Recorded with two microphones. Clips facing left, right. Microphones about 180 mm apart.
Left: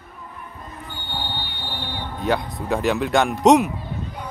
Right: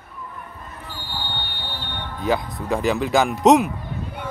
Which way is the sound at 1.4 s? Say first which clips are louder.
Left 2 dB; 60° right (ahead or behind).